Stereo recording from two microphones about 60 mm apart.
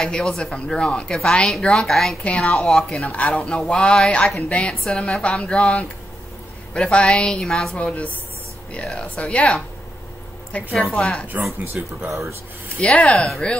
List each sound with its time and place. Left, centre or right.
0.0 s a woman's voice: centre
2.2 s speech: left
2.5 s a woman's voice: centre
3.1 s a woman's voice: left
7.4 s a woman's voice: centre
7.7 s speech: left
10.7 s a woman's voice: centre
11.0 s a woman's voice: centre
11.6 s speech: right
12.7 s a woman's voice: centre